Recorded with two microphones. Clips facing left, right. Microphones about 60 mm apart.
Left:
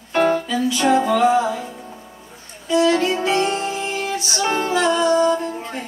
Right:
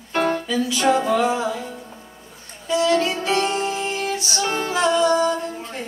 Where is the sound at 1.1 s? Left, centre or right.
Left.